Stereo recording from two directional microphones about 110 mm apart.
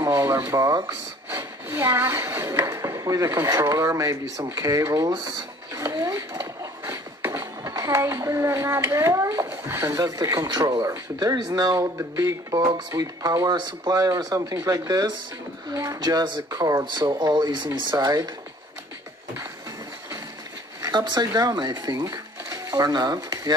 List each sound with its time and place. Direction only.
0.0 s a sound: 25° right (ahead or behind)
1.3 s wood: 20° right (ahead or behind)
2.6 s speech: 30° right (ahead or behind)
5.9 s speech: 30° right (ahead or behind)
6.6 s music: 30° right (ahead or behind)
9.7 s speech: 25° right (ahead or behind)
16.8 s speech: 40° right (ahead or behind)
20.8 s speech: 40° right (ahead or behind)
22.1 s a sound: 35° right (ahead or behind)